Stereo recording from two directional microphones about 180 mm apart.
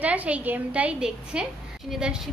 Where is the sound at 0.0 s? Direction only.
10° right (ahead or behind).